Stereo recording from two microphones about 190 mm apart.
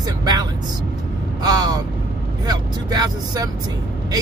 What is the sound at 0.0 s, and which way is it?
Music, 20° right (ahead or behind).